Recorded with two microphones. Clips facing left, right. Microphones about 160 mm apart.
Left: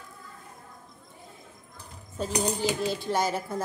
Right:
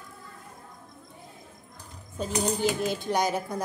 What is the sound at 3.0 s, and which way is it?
Speech, 15° right (ahead or behind).